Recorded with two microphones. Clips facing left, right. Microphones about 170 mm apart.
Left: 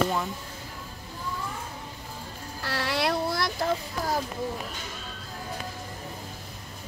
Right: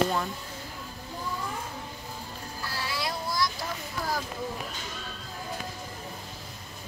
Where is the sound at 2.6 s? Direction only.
75° left (ahead or behind).